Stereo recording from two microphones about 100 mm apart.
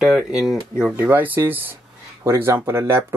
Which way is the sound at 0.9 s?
15° right (ahead or behind).